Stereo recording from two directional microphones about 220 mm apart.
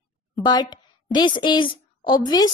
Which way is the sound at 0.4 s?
20° left (ahead or behind).